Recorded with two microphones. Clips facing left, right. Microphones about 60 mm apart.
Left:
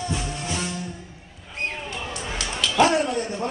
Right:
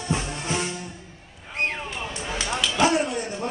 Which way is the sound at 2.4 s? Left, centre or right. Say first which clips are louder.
Left 2 dB; centre.